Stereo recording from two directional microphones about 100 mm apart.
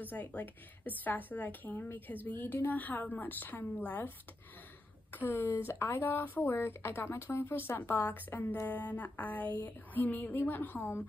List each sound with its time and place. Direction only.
0.0 s a woman's voice: 15° left (ahead or behind)
5.1 s a woman's voice: 20° left (ahead or behind)